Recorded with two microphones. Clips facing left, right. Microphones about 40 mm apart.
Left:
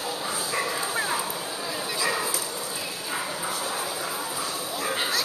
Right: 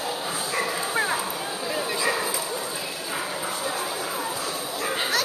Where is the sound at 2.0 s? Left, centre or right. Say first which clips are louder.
Right 1 dB; centre.